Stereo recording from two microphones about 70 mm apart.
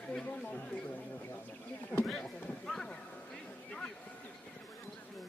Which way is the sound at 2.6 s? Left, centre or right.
Centre.